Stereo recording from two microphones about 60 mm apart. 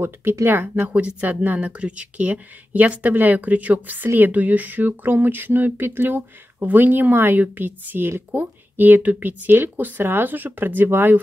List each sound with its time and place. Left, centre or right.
0.0 s speech: right